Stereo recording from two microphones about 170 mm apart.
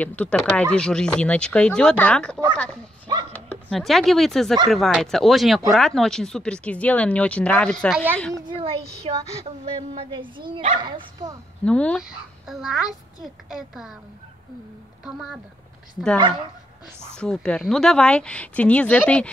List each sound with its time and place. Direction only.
0.0 s speech: 10° left (ahead or behind)
3.1 s a sound: 25° right (ahead or behind)
3.7 s speech: centre (ahead or behind)
7.9 s speech: 10° right (ahead or behind)
8.5 s a child's voice: 35° right (ahead or behind)
11.6 s speech: 5° left (ahead or behind)
15.0 s speech: 5° right (ahead or behind)
17.0 s speech: 5° left (ahead or behind)